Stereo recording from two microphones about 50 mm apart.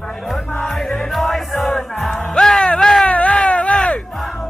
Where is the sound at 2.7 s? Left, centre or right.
Centre.